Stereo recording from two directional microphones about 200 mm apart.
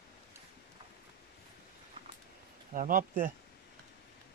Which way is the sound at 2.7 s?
40° right (ahead or behind).